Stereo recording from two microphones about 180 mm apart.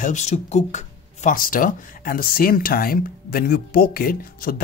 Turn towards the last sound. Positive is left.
turn(degrees=55)  # may be behind; listen again after turning